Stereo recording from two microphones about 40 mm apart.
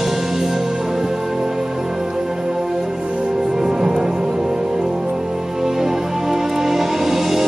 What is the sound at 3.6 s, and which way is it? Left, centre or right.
Music, centre.